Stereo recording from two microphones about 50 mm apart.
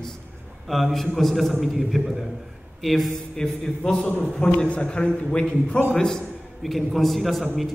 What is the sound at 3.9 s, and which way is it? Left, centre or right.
A man's voice, left.